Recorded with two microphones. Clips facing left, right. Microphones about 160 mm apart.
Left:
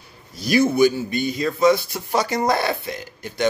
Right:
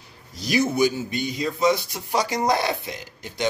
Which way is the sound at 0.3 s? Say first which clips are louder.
Left 4 dB; 20° right (ahead or behind).